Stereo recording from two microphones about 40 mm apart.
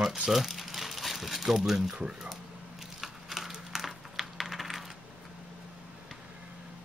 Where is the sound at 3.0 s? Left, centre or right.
Centre.